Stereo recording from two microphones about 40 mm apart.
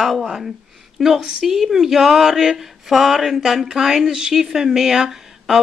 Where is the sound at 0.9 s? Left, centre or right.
Centre.